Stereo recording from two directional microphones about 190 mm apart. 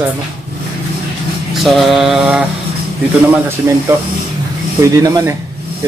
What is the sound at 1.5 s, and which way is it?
Mantra, centre (ahead or behind).